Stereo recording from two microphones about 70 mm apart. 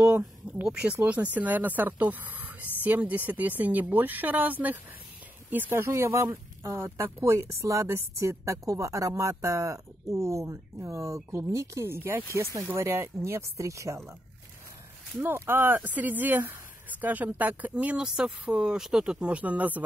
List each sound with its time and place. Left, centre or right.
0.0 s speech: centre
5.7 s speech: right
15.1 s speech: right
17.9 s a woman's voice: centre